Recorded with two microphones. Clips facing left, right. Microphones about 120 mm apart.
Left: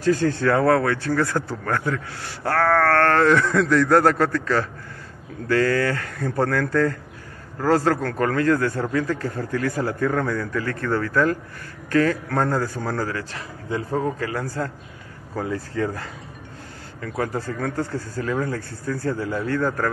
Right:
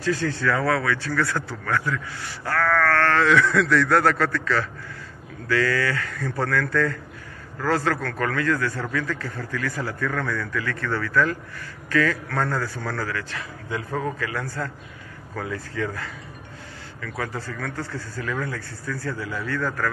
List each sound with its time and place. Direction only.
0.0 s speech: 45° left (ahead or behind)